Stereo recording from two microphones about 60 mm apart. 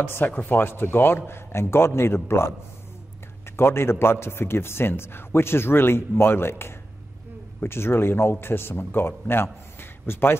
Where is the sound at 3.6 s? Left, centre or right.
Left.